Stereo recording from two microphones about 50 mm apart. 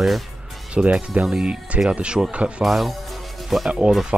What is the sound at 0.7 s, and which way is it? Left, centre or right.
Speech, right.